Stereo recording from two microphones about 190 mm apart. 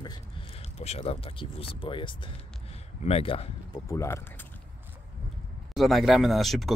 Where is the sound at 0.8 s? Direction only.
35° left (ahead or behind).